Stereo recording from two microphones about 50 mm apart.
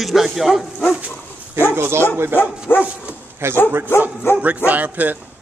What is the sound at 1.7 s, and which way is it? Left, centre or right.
Speech, right.